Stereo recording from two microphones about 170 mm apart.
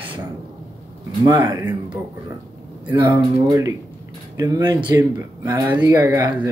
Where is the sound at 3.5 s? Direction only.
20° right (ahead or behind).